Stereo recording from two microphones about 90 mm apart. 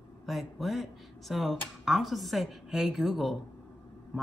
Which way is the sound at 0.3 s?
Centre (ahead or behind).